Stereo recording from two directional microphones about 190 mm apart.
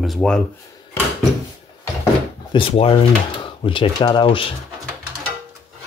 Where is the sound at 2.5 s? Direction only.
30° left (ahead or behind).